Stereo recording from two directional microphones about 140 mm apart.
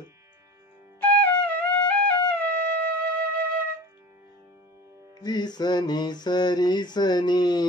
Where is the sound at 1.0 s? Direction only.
10° left (ahead or behind).